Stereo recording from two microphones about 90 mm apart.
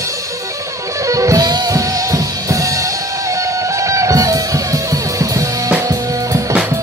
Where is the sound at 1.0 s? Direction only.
35° right (ahead or behind).